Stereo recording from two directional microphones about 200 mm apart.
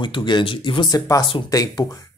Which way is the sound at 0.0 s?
25° left (ahead or behind).